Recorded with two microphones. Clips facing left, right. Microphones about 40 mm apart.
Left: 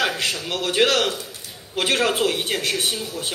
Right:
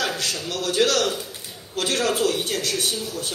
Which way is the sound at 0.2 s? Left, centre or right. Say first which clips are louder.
Left 2 dB; left.